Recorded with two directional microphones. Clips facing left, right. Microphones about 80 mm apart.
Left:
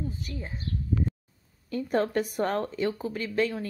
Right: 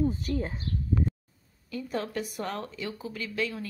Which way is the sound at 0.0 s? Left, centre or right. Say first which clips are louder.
Right 8 dB; right.